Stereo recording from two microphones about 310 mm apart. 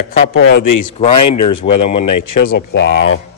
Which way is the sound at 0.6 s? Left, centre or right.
Left.